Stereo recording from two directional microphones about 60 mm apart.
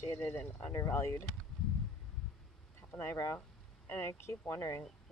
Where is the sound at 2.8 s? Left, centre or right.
Left.